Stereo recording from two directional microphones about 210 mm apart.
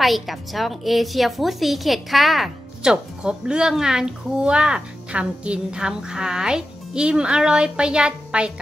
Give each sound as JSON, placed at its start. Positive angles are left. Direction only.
{"t": 0.0, "sound": "a woman's voice", "side_deg": 0}